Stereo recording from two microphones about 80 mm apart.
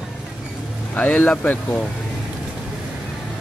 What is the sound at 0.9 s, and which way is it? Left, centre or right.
Speech, centre.